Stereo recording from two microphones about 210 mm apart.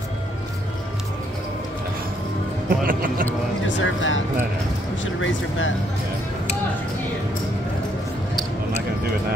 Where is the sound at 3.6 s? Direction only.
65° left (ahead or behind).